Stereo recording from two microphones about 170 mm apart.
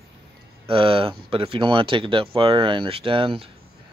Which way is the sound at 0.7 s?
30° right (ahead or behind).